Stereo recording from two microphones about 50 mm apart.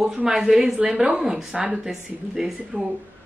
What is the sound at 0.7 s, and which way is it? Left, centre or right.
Speech, right.